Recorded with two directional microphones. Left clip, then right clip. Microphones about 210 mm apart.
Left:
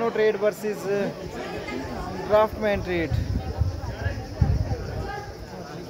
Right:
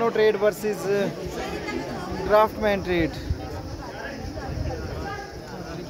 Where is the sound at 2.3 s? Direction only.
15° right (ahead or behind).